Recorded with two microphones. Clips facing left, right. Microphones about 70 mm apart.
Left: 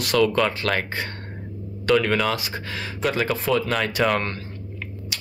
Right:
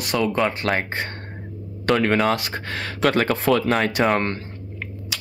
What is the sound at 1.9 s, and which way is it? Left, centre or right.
Speech, right.